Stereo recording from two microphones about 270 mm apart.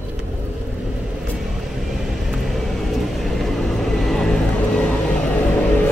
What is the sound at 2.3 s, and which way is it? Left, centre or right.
Vehicle, centre.